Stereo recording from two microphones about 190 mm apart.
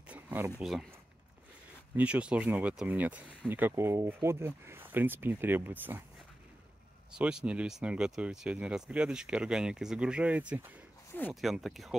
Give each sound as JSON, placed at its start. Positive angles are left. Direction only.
{"t": 0.1, "sound": "a sound", "side_deg": -10}
{"t": 0.6, "sound": "speech", "side_deg": 0}
{"t": 2.0, "sound": "speech", "side_deg": -5}
{"t": 7.2, "sound": "speech", "side_deg": -5}